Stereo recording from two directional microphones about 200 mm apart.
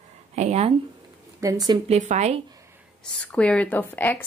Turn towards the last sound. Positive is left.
turn(degrees=10)  # may be behind; listen again after turning